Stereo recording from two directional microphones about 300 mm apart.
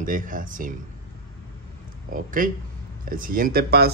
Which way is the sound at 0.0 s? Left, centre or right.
Right.